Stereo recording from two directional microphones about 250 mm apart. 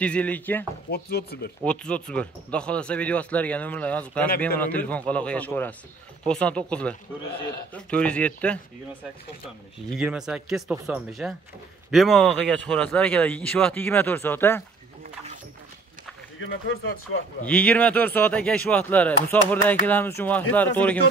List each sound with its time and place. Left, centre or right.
0.0 s speech: centre
0.8 s speech: left
1.6 s speech: centre
9.8 s speech: centre
16.3 s speech: left
17.5 s speech: centre